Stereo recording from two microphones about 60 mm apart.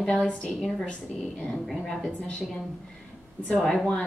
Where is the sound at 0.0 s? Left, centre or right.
Centre.